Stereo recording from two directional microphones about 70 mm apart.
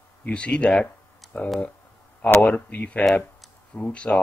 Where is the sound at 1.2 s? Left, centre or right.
Centre.